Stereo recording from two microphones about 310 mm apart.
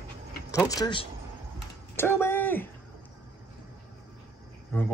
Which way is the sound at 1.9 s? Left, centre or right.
Centre.